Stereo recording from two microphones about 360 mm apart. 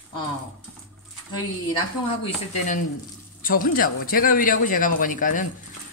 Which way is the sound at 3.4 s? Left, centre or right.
Left.